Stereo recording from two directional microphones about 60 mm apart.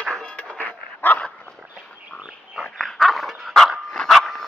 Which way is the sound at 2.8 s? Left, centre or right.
Centre.